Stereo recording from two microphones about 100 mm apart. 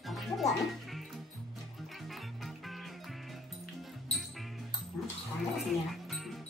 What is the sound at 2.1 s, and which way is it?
Music, centre (ahead or behind).